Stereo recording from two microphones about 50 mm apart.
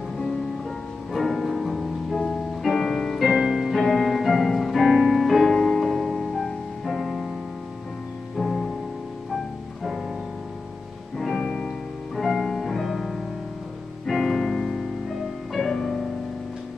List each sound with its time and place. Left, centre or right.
1.1 s music: centre
2.1 s music: centre
3.2 s music: centre
5.5 s music: centre
8.4 s music: centre
11.1 s music: centre
11.4 s music: centre
12.2 s music: centre